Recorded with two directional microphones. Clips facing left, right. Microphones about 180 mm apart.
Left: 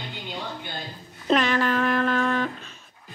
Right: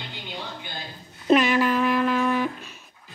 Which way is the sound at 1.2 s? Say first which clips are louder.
Right 3 dB; 10° right (ahead or behind).